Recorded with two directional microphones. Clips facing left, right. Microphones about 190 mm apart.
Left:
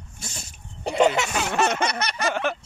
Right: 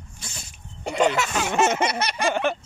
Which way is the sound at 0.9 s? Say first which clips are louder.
Left 2 dB; 25° left (ahead or behind).